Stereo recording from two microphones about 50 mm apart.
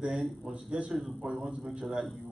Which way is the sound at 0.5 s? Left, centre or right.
Centre.